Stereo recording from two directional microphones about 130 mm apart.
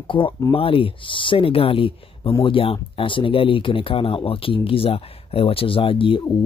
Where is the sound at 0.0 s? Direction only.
40° left (ahead or behind).